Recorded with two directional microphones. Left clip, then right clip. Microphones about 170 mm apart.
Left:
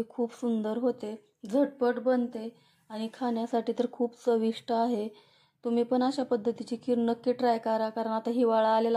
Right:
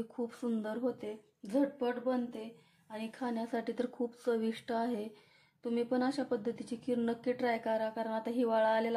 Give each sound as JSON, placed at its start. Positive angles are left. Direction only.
{"t": 0.1, "sound": "speech", "side_deg": 25}